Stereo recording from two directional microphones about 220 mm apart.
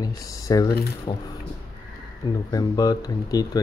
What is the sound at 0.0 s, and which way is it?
Speech, 15° left (ahead or behind).